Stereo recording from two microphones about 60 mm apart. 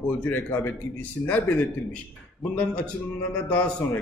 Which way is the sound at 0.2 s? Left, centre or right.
Left.